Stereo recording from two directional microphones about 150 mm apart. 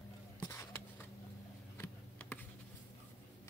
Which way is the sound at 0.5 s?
15° left (ahead or behind).